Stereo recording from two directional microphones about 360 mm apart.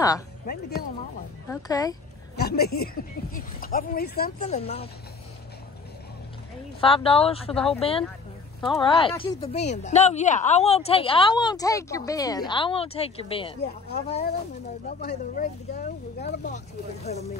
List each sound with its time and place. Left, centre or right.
1.5 s speech: centre
2.3 s speech: left
6.8 s speech: centre
7.5 s speech: centre
8.6 s speech: centre
13.6 s speech: left